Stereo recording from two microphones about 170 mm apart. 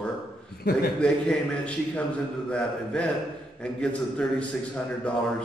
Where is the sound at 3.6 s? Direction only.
5° left (ahead or behind).